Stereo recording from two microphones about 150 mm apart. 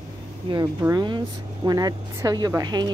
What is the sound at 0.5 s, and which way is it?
Speech, 35° right (ahead or behind).